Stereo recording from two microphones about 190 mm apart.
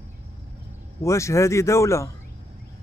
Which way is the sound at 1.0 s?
15° left (ahead or behind).